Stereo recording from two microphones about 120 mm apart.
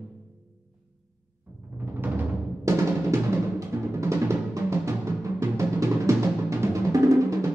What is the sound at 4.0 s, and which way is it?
Drum, 25° right (ahead or behind).